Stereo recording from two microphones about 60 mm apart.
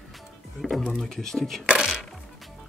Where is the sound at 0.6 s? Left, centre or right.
Centre.